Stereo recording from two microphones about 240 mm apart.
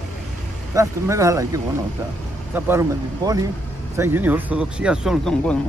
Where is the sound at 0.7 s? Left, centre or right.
Centre.